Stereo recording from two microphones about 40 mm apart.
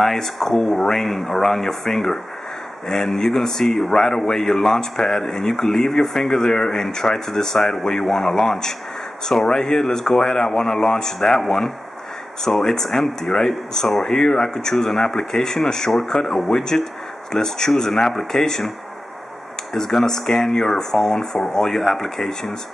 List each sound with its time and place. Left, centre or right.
0.0 s speech: centre
1.2 s speech: centre
19.7 s speech: centre